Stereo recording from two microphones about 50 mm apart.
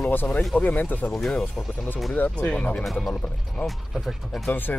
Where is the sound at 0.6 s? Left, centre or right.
Left.